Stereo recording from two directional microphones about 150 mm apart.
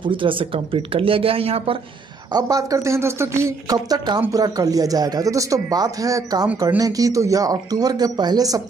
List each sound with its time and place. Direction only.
0.0 s speech: 35° right (ahead or behind)
2.3 s speech: 20° right (ahead or behind)